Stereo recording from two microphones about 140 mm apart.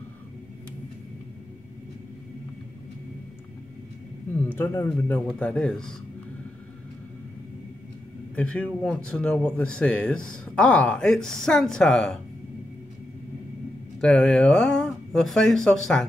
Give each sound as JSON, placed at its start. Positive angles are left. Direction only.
{"t": 4.6, "sound": "speech", "side_deg": 15}
{"t": 8.4, "sound": "speech", "side_deg": 10}
{"t": 14.0, "sound": "speech", "side_deg": 5}